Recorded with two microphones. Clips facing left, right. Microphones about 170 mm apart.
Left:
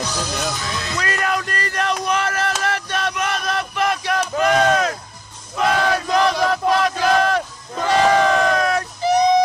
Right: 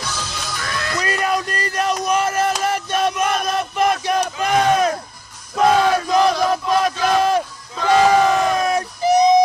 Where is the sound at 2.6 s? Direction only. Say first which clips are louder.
Right 4 dB; 15° right (ahead or behind).